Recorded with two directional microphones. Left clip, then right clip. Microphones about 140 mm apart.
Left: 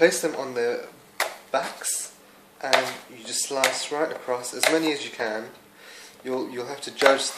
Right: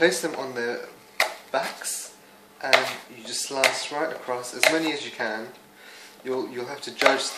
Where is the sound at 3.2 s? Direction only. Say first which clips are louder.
Right 1 dB; 30° left (ahead or behind).